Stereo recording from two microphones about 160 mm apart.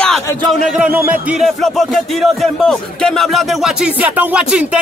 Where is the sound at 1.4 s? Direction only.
Centre (ahead or behind).